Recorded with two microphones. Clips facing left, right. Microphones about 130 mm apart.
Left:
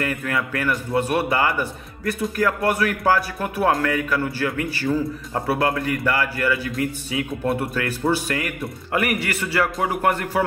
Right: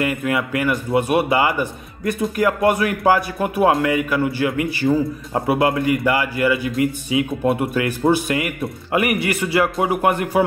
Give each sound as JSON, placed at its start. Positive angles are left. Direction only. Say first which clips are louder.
{"t": 0.0, "sound": "a man's voice", "louder": "right 4 dB", "side_deg": -15}